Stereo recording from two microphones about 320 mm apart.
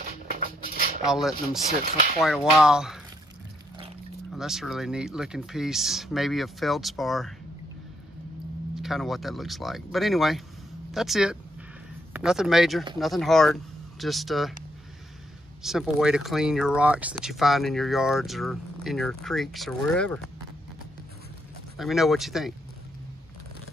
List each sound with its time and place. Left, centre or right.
0.3 s a sound: right
1.0 s speech: centre
4.3 s speech: centre
8.7 s speech: centre
15.6 s speech: centre
21.7 s speech: centre